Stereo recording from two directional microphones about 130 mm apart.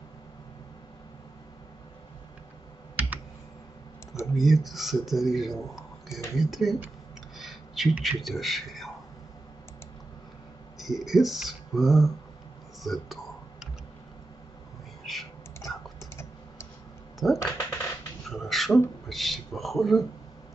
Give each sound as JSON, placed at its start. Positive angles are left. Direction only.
{"t": 4.4, "sound": "a man's voice", "side_deg": 0}
{"t": 10.8, "sound": "a man's voice", "side_deg": 0}
{"t": 12.8, "sound": "typing", "side_deg": 0}
{"t": 15.0, "sound": "typing", "side_deg": 0}
{"t": 17.4, "sound": "a sound", "side_deg": 25}
{"t": 18.3, "sound": "a man's voice", "side_deg": 0}